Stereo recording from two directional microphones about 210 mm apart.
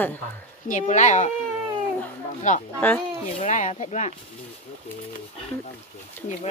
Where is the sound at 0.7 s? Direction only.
35° left (ahead or behind).